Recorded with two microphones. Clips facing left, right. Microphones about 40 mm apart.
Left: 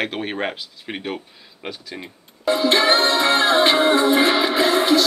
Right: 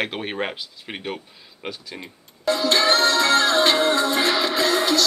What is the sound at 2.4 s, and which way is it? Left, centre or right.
Music, left.